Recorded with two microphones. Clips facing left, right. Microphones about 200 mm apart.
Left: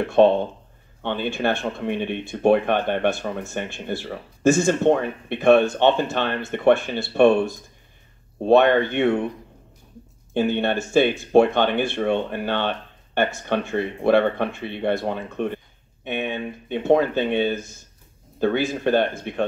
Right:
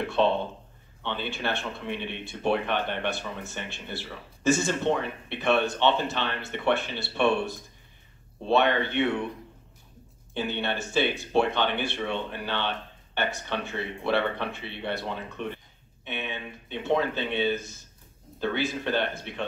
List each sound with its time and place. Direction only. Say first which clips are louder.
0.0 s speech: left 8 dB; 50° left (ahead or behind)
10.3 s speech: left 9 dB; 50° left (ahead or behind)